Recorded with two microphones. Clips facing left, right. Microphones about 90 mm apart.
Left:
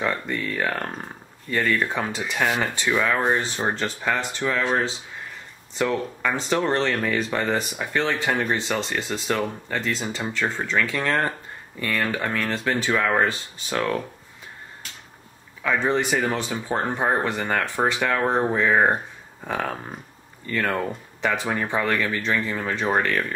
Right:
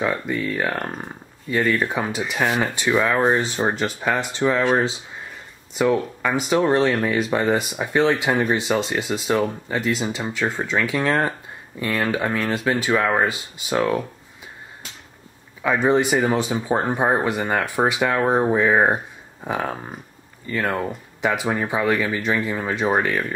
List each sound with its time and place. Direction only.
0.0 s speech: 5° right (ahead or behind)
15.6 s speech: 15° right (ahead or behind)